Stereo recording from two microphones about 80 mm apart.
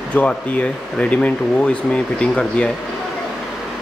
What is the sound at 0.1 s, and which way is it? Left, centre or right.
Speech, centre.